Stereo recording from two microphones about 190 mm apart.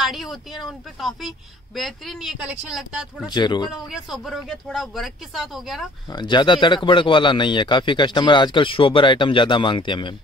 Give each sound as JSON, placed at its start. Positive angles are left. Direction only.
{"t": 0.0, "sound": "speech", "side_deg": 0}
{"t": 3.3, "sound": "speech", "side_deg": 25}
{"t": 3.9, "sound": "speech", "side_deg": 0}
{"t": 6.0, "sound": "speech", "side_deg": 25}